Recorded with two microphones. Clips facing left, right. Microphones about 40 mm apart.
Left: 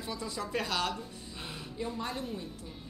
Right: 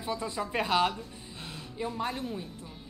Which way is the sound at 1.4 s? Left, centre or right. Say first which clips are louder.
Left 1 dB; centre.